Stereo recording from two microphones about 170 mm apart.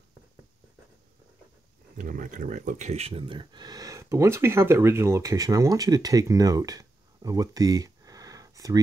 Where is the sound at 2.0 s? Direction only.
50° right (ahead or behind).